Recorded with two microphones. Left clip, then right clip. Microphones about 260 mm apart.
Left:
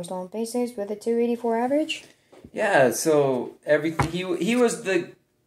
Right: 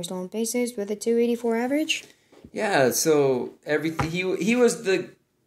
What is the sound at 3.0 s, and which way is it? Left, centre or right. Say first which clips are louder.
A woman's voice: even; right.